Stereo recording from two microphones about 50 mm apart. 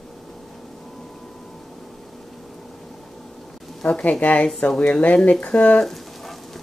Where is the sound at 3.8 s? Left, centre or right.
Left.